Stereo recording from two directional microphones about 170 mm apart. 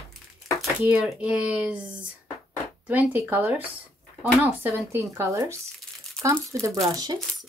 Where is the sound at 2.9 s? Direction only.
10° right (ahead or behind).